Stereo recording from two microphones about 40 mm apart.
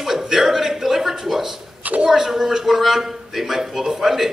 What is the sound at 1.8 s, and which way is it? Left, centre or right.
Speech, right.